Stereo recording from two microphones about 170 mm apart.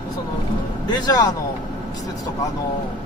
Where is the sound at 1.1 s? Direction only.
20° left (ahead or behind).